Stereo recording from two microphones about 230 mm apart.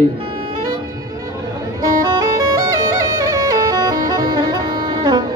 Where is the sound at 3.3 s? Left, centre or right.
Centre.